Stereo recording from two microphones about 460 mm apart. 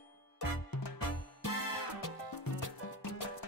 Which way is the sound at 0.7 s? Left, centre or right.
Left.